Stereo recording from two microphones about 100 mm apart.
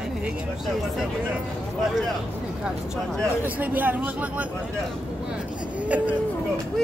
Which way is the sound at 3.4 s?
15° right (ahead or behind).